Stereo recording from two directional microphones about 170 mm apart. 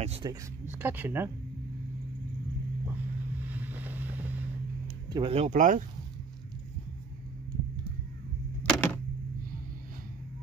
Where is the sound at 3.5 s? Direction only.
10° right (ahead or behind).